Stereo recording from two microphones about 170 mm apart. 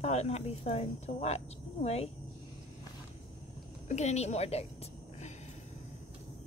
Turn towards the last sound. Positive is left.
turn(degrees=40)  # may be behind; listen again after turning